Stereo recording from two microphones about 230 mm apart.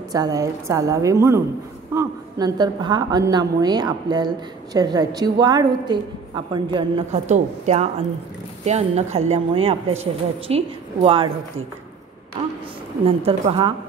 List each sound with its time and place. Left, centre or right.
0.1 s a woman's voice: centre
13.0 s a woman's voice: right